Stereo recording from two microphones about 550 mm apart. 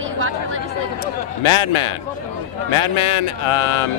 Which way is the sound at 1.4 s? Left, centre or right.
Left.